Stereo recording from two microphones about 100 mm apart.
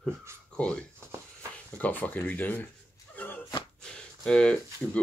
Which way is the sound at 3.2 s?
15° left (ahead or behind).